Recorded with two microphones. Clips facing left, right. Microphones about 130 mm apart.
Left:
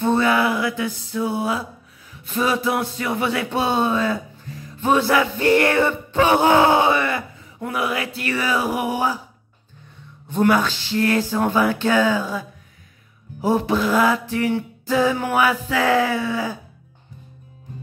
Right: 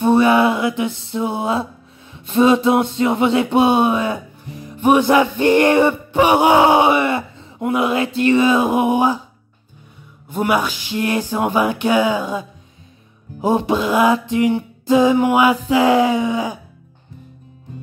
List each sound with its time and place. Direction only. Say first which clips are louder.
0.0 s mantra: right 5 dB; 20° right (ahead or behind)
2.1 s a sound: right 8 dB; 25° right (ahead or behind)
10.2 s music: left 1 dB; 10° right (ahead or behind)